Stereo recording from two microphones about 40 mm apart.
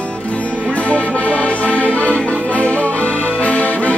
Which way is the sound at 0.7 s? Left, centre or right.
Left.